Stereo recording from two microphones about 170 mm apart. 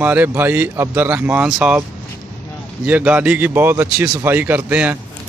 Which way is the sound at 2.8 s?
10° right (ahead or behind).